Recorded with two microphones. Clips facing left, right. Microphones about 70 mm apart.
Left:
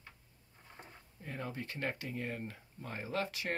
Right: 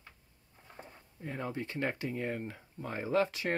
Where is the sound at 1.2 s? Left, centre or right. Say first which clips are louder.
Right 4 dB; right.